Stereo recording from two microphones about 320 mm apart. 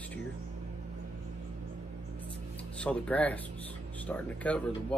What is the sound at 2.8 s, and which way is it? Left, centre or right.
Speech, centre.